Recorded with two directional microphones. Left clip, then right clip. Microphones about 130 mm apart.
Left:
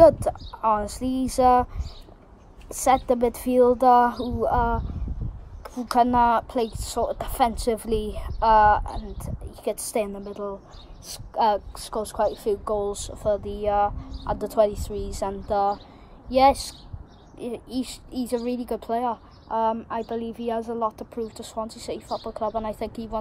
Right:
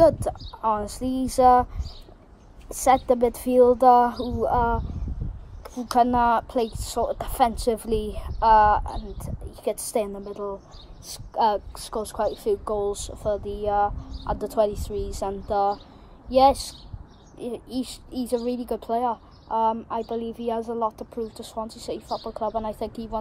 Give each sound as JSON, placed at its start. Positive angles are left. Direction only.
{"t": 0.0, "sound": "a woman's voice", "side_deg": 5}
{"t": 0.8, "sound": "speech", "side_deg": 45}
{"t": 1.3, "sound": "speech", "side_deg": 10}
{"t": 2.9, "sound": "speech", "side_deg": 10}
{"t": 11.3, "sound": "speech", "side_deg": 5}